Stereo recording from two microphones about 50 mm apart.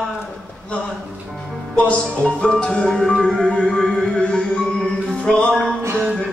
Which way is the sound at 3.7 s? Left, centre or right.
Centre.